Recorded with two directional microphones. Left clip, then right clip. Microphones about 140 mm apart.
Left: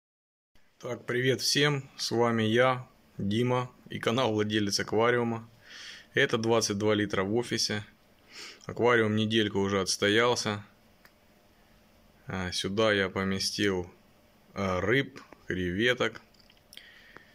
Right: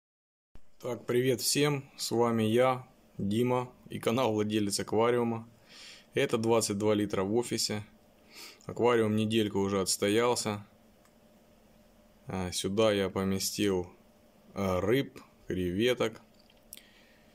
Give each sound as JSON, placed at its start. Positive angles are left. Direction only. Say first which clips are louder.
{"t": 0.7, "sound": "speech", "louder": "right 1 dB", "side_deg": -15}
{"t": 12.3, "sound": "speech", "louder": "left 2 dB", "side_deg": -20}
{"t": 16.7, "sound": "squish", "louder": "left 5 dB", "side_deg": -15}